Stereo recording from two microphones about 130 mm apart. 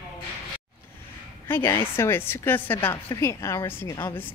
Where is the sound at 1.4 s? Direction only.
20° left (ahead or behind).